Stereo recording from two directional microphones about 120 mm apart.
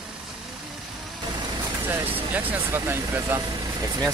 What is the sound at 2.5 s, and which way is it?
Speech, 20° right (ahead or behind).